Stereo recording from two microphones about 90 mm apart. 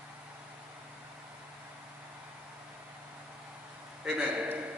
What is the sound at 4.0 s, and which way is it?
Speech, 20° right (ahead or behind).